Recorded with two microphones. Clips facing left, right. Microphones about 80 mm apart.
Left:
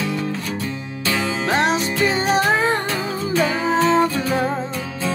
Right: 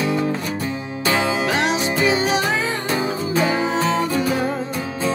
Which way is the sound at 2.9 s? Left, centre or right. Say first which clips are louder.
Right 1 dB; centre.